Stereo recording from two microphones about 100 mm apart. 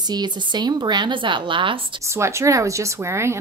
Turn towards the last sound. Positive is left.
turn(degrees=-25)  # may be behind; listen again after turning